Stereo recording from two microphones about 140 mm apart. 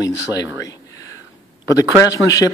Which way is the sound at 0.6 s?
25° left (ahead or behind).